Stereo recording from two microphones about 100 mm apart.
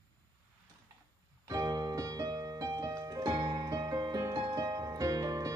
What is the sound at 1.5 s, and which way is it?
Music, 40° right (ahead or behind).